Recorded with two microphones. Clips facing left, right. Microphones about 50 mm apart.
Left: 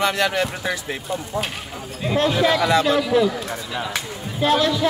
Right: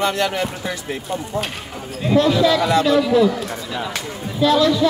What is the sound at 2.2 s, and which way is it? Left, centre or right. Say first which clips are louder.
Speech: right 2 dB; left.